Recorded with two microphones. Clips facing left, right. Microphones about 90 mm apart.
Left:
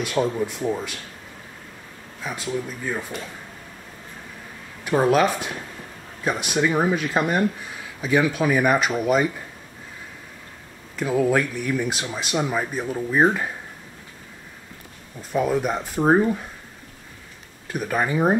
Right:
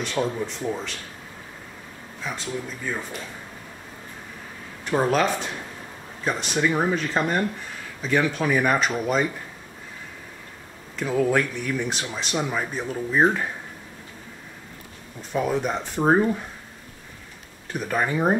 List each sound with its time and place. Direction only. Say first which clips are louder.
0.0 s speech: left 3 dB; 10° left (ahead or behind)
2.2 s speech: left 3 dB; 5° left (ahead or behind)
4.8 s speech: left 3 dB; 5° left (ahead or behind)
11.0 s speech: left 1 dB; 5° left (ahead or behind)
15.3 s speech: left 2 dB; 5° left (ahead or behind)
17.7 s speech: left 2 dB; 5° left (ahead or behind)